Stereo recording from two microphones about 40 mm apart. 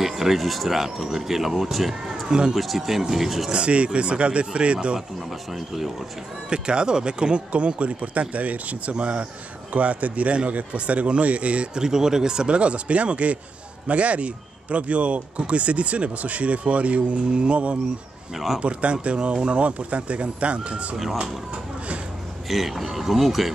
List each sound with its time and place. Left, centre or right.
0.0 s speech: centre
2.2 s speech: right
2.5 s speech: centre
3.5 s speech: right
6.5 s speech: right
11.8 s speech: centre; by 20.9 s right
22.5 s speech: centre